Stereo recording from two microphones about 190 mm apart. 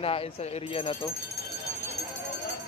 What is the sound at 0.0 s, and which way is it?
Speech, 30° left (ahead or behind).